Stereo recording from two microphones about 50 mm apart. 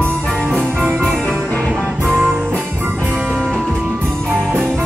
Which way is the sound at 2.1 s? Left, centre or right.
Centre.